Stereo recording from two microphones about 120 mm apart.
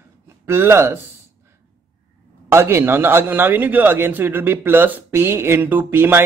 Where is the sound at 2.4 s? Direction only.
20° right (ahead or behind).